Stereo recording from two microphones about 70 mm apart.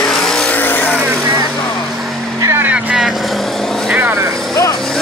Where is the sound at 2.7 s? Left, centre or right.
Centre.